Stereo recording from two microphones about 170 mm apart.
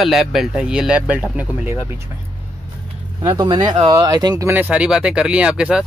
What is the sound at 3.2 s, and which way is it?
Speech, 20° right (ahead or behind).